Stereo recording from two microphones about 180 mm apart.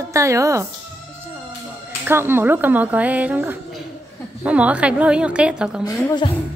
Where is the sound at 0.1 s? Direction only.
15° right (ahead or behind).